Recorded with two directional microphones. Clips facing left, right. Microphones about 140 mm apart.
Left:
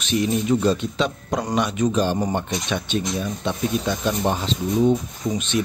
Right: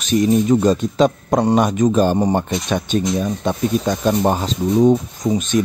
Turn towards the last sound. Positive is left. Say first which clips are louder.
# right 6 dB
turn(degrees=-40)  # may be behind; listen again after turning